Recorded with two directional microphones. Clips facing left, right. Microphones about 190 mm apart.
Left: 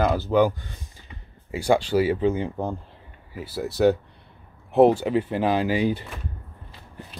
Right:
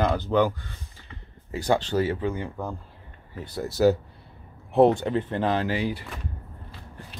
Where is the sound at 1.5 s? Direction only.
10° left (ahead or behind).